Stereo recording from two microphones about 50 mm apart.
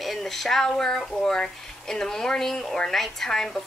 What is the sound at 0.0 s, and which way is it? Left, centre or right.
A woman's voice, centre.